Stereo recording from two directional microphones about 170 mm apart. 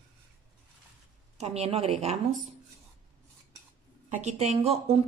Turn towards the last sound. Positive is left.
turn(degrees=-35)  # may be behind; listen again after turning